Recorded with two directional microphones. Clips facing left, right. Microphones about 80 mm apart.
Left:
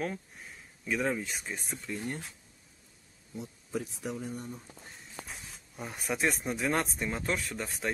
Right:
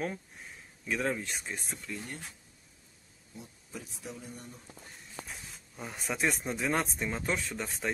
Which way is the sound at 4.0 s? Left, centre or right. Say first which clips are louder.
Left 7 dB; left.